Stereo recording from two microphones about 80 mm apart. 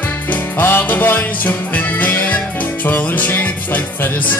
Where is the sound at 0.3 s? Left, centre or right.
Left.